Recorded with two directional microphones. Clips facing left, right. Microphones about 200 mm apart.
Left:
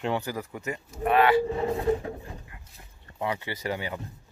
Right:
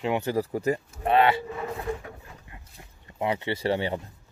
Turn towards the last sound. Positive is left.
turn(degrees=-30)  # may be behind; listen again after turning